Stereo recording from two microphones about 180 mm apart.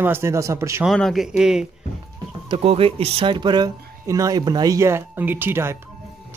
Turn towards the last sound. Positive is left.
turn(degrees=-10)  # may be behind; listen again after turning